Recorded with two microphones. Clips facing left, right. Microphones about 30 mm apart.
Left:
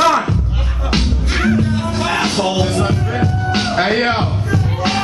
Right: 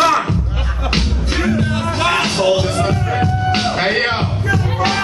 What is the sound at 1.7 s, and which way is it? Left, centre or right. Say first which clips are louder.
Music: right 2 dB; right.